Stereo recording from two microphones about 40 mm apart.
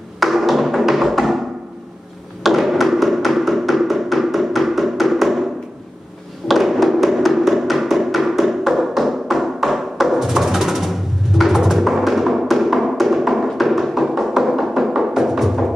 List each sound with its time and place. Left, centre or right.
0.2 s music: centre
2.4 s music: centre
6.4 s music: centre